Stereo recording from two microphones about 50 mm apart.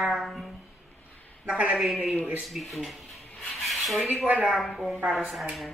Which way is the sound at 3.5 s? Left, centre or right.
Centre.